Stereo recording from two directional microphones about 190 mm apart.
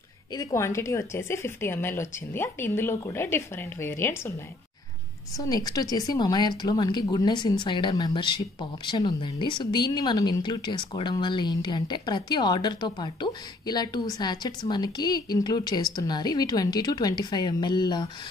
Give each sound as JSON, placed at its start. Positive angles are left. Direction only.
{"t": 0.3, "sound": "speech", "side_deg": 15}
{"t": 5.4, "sound": "speech", "side_deg": 20}